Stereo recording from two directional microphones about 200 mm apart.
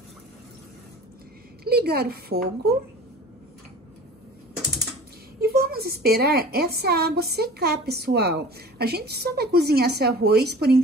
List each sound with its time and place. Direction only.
1.6 s a woman's voice: 50° right (ahead or behind)
5.4 s a woman's voice: 50° right (ahead or behind)